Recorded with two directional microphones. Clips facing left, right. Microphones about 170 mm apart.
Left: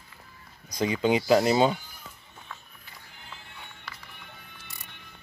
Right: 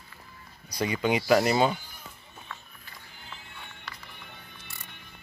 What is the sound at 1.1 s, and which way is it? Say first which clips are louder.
Speech: left 1 dB; 25° left (ahead or behind).